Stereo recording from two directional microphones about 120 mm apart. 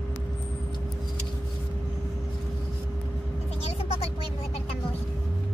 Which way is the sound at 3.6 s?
55° left (ahead or behind).